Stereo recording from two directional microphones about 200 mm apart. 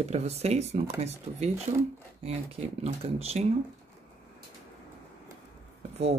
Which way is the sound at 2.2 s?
30° right (ahead or behind).